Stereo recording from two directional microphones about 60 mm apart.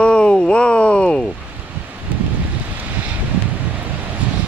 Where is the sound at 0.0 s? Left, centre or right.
Centre.